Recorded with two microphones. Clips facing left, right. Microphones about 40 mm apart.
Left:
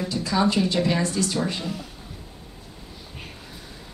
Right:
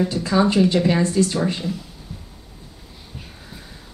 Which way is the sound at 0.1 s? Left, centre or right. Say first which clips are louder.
Right 4 dB; right.